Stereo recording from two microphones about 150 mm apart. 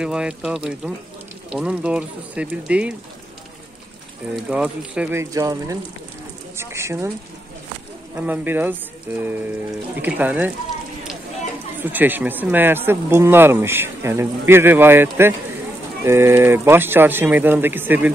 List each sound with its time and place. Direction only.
0.0 s speech: 5° right (ahead or behind)
4.4 s speech: 5° right (ahead or behind)
5.1 s speech: 20° right (ahead or behind)
6.5 s a sound: 15° right (ahead or behind)
8.2 s speech: 10° right (ahead or behind)
11.8 s speech: 10° right (ahead or behind)